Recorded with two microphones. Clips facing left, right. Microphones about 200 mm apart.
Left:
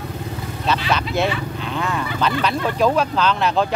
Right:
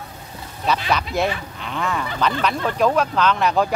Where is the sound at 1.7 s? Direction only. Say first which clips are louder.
Even; centre (ahead or behind).